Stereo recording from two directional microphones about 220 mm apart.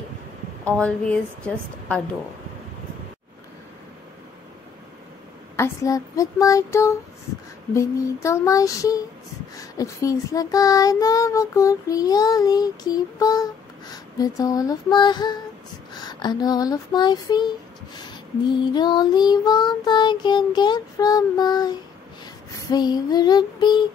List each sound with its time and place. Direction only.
0.7 s a woman's voice: 5° left (ahead or behind)
5.6 s child singing: 15° left (ahead or behind)
15.9 s a sound: 20° left (ahead or behind)
18.7 s child singing: 20° left (ahead or behind)